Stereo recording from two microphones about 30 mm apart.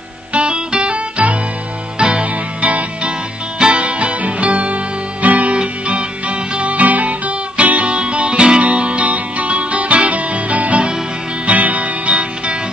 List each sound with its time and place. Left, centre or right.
0.3 s music: right
2.0 s music: right
2.6 s music: right
5.6 s music: right
7.9 s music: right
8.6 s music: right